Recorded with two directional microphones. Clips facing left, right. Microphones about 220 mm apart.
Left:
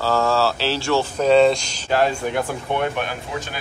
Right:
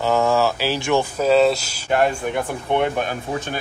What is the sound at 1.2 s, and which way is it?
Speech, 5° right (ahead or behind).